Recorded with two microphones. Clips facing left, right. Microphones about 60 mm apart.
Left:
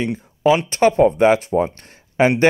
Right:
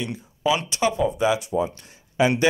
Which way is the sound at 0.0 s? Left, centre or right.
Left.